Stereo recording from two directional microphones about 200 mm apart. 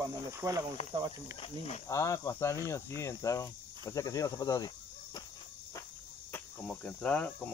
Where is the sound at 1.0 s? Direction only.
20° right (ahead or behind).